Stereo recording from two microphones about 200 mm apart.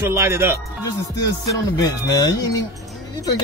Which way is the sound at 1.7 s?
20° left (ahead or behind).